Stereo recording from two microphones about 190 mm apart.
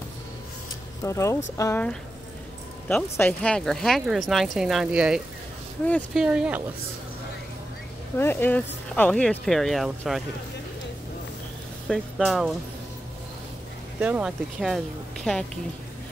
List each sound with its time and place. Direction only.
1.0 s speech: 15° left (ahead or behind)
2.9 s speech: 5° left (ahead or behind)
8.2 s speech: 10° left (ahead or behind)
11.9 s speech: centre (ahead or behind)
13.9 s speech: 10° right (ahead or behind)